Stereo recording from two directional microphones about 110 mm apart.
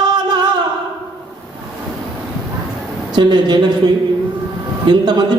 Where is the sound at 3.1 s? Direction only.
45° right (ahead or behind).